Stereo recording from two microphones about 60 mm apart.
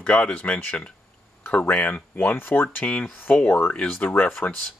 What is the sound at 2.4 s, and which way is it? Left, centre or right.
Speech, left.